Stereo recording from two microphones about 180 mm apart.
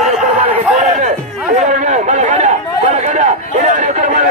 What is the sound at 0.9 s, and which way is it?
Speech, 45° right (ahead or behind).